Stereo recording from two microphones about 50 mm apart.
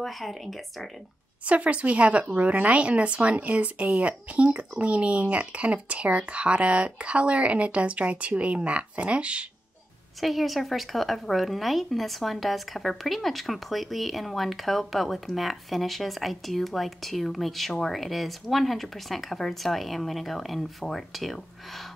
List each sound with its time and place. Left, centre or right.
0.0 s a woman's voice: centre
1.4 s a woman's voice: right
10.2 s a woman's voice: centre